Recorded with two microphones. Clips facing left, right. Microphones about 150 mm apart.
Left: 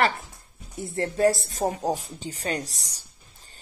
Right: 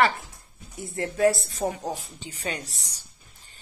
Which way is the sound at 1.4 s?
40° left (ahead or behind).